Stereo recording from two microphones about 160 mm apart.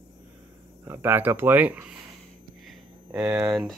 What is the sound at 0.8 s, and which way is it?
Speech, 15° right (ahead or behind).